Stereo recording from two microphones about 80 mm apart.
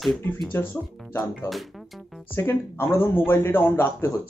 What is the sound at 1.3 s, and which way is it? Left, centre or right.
Speech, centre.